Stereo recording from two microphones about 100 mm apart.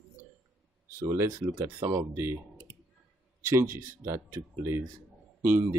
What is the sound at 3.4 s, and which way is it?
Speech, 25° right (ahead or behind).